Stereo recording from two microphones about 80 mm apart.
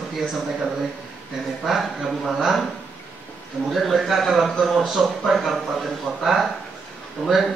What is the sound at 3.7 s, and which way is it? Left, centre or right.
Speech, centre.